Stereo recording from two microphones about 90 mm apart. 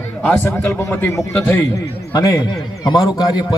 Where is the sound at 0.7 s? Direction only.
25° left (ahead or behind).